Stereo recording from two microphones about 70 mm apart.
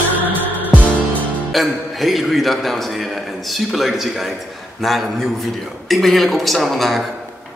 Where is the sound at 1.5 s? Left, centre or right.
Centre.